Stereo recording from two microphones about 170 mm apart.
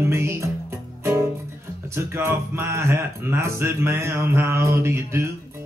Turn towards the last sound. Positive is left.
turn(degrees=-15)  # may be behind; listen again after turning